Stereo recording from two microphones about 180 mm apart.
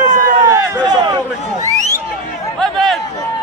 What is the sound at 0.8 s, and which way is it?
Speech, 25° right (ahead or behind).